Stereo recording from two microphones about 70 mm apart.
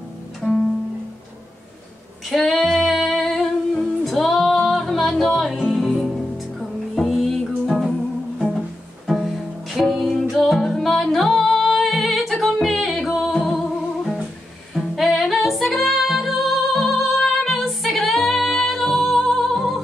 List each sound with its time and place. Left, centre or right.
0.4 s music: centre
2.2 s singing: centre
8.4 s music: centre